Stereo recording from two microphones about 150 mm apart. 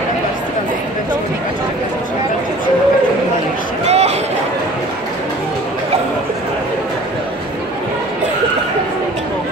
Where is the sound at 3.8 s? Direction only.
45° right (ahead or behind).